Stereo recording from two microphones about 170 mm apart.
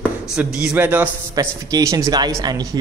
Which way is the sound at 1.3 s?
20° right (ahead or behind).